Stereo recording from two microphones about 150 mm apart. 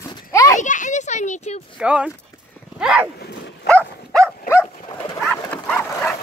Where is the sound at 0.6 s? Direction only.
55° left (ahead or behind).